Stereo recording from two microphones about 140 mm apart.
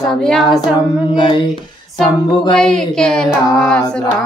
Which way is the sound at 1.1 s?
35° left (ahead or behind).